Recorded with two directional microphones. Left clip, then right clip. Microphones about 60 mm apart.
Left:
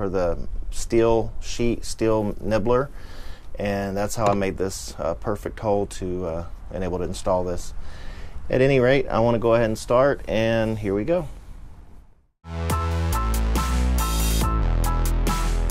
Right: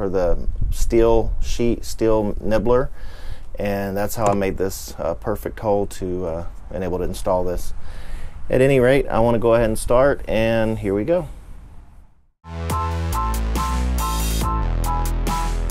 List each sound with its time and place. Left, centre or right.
0.0 s speech: right
12.4 s music: centre